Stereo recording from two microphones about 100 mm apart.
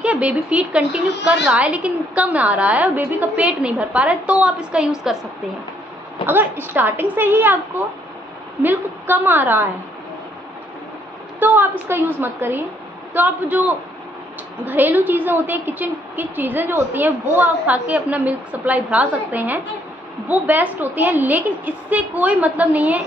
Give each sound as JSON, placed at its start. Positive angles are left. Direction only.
{"t": 0.0, "sound": "a woman's voice", "side_deg": -15}
{"t": 6.2, "sound": "speech", "side_deg": -20}
{"t": 11.3, "sound": "a woman's voice", "side_deg": -20}